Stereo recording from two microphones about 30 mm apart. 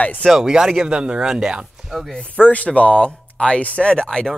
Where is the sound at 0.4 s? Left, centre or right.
Right.